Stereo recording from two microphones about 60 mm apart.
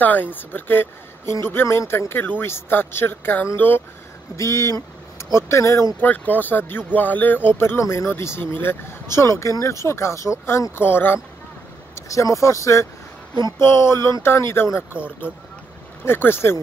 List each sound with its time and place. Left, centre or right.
0.0 s speech: left
4.4 s speech: left
5.9 s speech: left
9.8 s speech: left
10.8 s speech: left
11.9 s speech: left
13.6 s speech: left
16.1 s speech: left